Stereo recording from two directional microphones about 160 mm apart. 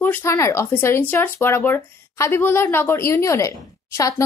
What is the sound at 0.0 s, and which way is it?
Speech, 15° left (ahead or behind).